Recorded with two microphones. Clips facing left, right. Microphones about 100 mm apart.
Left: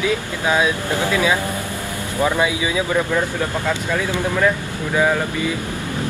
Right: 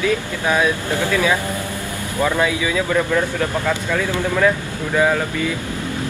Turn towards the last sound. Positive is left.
turn(degrees=5)  # may be behind; listen again after turning